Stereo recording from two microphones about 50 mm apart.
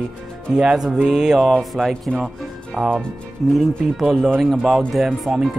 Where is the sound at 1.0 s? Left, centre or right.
Centre.